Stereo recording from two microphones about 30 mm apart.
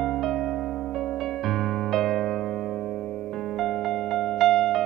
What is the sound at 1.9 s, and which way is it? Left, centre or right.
Music, centre.